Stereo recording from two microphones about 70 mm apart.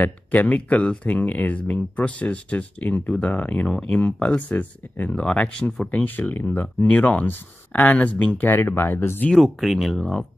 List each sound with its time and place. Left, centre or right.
0.0 s speech: left
8.5 s speech: left
9.3 s speech: centre